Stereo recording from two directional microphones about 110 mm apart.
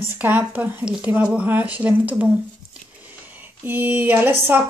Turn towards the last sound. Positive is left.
turn(degrees=-20)  # may be behind; listen again after turning